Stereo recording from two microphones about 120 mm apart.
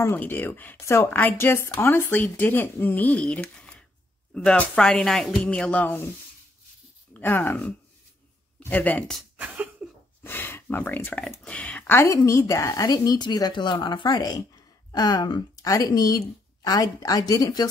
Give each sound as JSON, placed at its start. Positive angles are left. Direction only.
{"t": 0.0, "sound": "speech", "side_deg": 20}
{"t": 7.2, "sound": "speech", "side_deg": 15}
{"t": 10.2, "sound": "speech", "side_deg": 15}
{"t": 12.0, "sound": "a woman's voice", "side_deg": 25}